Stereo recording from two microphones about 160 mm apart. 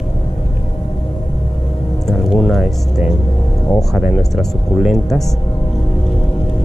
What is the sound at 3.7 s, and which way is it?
Speech, centre (ahead or behind).